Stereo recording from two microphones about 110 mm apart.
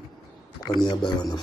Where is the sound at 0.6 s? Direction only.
40° left (ahead or behind).